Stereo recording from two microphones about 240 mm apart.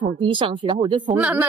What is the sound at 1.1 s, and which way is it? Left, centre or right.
Speech, centre.